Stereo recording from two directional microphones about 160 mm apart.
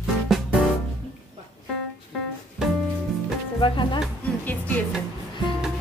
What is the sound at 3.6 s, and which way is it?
Music, 30° left (ahead or behind).